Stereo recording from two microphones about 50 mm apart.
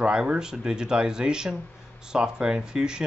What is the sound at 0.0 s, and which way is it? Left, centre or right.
Speech, centre.